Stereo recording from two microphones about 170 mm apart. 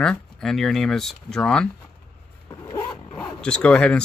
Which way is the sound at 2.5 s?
20° left (ahead or behind).